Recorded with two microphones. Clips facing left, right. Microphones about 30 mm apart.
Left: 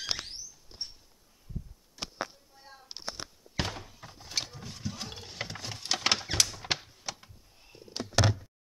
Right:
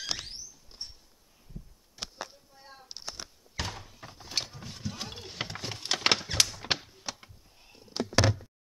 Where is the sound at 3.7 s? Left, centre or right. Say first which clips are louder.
Left 2 dB; centre.